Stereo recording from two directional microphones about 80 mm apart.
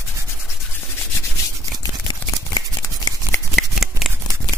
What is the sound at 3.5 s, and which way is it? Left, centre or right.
Shuffling cards, centre.